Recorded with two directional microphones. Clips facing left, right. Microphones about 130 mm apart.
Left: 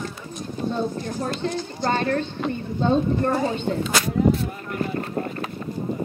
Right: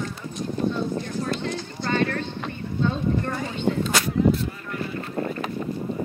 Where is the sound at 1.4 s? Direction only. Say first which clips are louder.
Left 4 dB; 40° left (ahead or behind).